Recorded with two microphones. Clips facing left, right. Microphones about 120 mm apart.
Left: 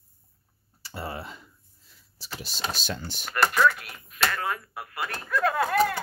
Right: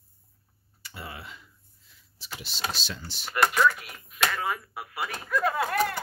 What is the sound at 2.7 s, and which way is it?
Speech, 45° left (ahead or behind).